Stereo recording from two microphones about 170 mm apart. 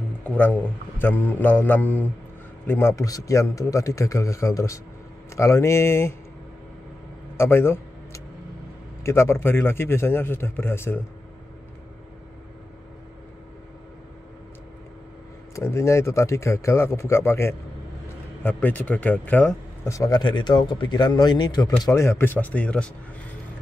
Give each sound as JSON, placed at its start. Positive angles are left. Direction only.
{"t": 0.2, "sound": "speech", "side_deg": 10}
{"t": 7.3, "sound": "a sound", "side_deg": 15}
{"t": 9.0, "sound": "speech", "side_deg": 15}
{"t": 15.5, "sound": "speech", "side_deg": 15}